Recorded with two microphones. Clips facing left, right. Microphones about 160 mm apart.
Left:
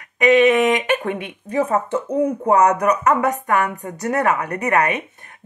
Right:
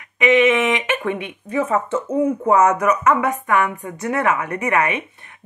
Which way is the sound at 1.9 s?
15° left (ahead or behind).